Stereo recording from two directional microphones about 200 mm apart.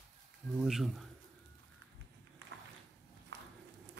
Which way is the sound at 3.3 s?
65° right (ahead or behind).